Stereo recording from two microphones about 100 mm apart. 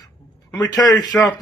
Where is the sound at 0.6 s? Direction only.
40° left (ahead or behind).